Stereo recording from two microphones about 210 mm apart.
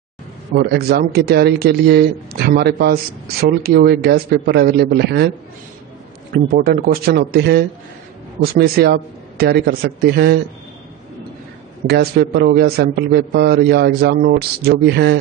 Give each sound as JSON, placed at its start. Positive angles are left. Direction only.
{"t": 0.6, "sound": "a man's voice", "side_deg": -50}
{"t": 6.3, "sound": "a man's voice", "side_deg": -45}
{"t": 11.9, "sound": "a man's voice", "side_deg": -50}